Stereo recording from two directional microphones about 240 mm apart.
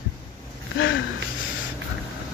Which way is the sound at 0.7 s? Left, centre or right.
Left.